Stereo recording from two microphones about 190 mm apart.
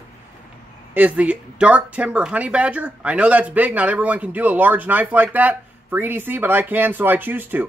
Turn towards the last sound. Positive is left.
turn(degrees=-10)  # may be behind; listen again after turning